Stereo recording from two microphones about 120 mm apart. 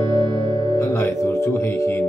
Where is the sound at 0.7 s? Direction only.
25° left (ahead or behind).